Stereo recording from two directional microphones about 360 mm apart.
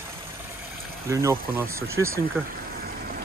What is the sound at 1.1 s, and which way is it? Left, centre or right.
Speech, centre.